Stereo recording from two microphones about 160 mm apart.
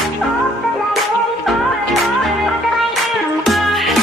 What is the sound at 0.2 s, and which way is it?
Music, centre (ahead or behind).